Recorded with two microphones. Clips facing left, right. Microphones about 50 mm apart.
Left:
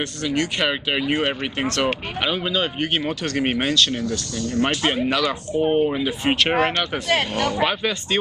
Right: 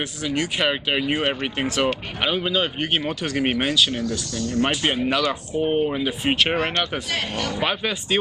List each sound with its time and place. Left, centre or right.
0.0 s speech: centre
4.4 s speech: left
4.6 s speech: centre